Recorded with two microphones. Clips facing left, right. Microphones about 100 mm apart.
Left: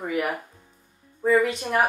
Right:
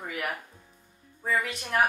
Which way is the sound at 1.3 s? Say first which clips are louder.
Left 9 dB; centre (ahead or behind).